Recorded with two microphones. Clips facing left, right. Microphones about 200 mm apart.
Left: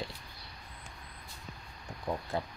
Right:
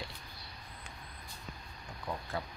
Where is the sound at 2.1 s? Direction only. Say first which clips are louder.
Left 5 dB; 20° left (ahead or behind).